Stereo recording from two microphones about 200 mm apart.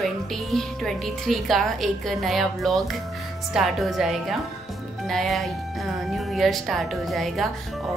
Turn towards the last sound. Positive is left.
turn(degrees=0)  # may be behind; listen again after turning